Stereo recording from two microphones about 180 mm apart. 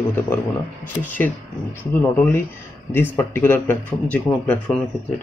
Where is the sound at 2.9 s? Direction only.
10° left (ahead or behind).